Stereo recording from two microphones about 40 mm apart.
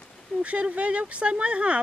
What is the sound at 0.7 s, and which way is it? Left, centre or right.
Speech, right.